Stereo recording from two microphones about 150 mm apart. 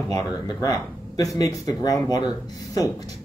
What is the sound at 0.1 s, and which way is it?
A man's voice, 25° left (ahead or behind).